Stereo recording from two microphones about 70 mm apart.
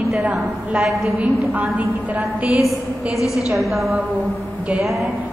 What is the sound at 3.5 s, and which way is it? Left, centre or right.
A woman's voice, centre.